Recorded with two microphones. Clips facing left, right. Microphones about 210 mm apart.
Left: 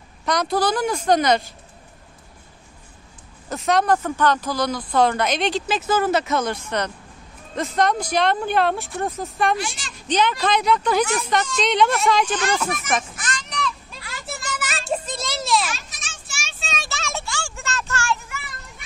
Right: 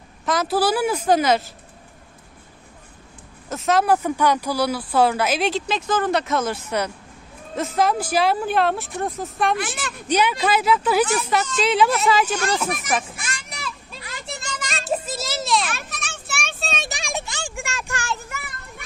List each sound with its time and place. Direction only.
0.2 s speech: 5° right (ahead or behind)
3.4 s speech: centre (ahead or behind)
9.6 s speech: 55° right (ahead or behind)
10.0 s speech: 10° right (ahead or behind)
12.9 s children playing: 10° right (ahead or behind)
14.6 s music: 5° left (ahead or behind)
15.0 s a sound: 5° right (ahead or behind)
15.7 s child singing: 60° right (ahead or behind)
16.5 s child singing: 35° right (ahead or behind)
16.8 s music: 15° right (ahead or behind)
18.3 s child singing: 55° right (ahead or behind)